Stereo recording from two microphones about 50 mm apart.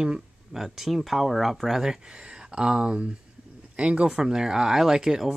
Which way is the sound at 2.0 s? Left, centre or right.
Centre.